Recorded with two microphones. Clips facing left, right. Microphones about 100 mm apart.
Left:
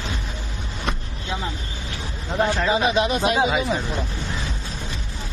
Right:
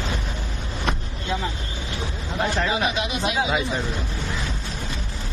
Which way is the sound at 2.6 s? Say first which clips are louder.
Left 4 dB; 30° left (ahead or behind).